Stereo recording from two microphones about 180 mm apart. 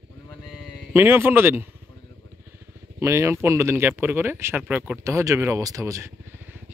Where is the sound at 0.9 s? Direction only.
10° right (ahead or behind).